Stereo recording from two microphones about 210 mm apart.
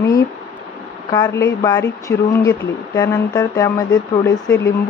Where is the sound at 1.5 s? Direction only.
20° left (ahead or behind).